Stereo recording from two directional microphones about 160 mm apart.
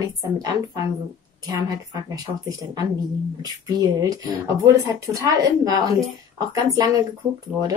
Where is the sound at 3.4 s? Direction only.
20° right (ahead or behind).